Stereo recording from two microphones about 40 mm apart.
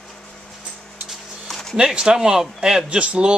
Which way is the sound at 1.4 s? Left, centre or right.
Centre.